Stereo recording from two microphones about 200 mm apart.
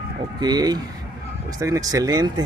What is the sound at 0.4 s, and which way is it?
Speech, 20° right (ahead or behind).